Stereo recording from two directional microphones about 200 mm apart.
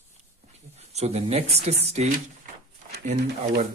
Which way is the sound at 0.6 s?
35° right (ahead or behind).